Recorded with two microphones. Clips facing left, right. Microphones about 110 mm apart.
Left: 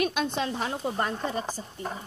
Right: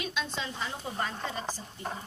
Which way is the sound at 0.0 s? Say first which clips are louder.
Left 8 dB; 55° left (ahead or behind).